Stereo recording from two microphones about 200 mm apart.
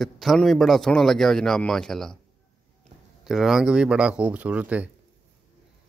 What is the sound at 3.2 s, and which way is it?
Speech, centre (ahead or behind).